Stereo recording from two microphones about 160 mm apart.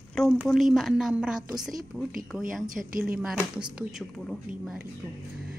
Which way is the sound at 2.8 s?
60° right (ahead or behind).